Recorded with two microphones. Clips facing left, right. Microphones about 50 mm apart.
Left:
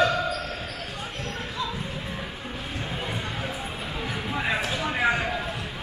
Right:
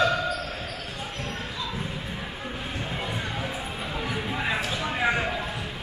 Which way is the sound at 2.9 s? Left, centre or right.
Centre.